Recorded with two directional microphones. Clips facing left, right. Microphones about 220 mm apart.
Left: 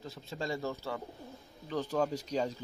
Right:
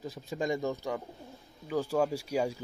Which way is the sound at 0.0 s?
15° right (ahead or behind).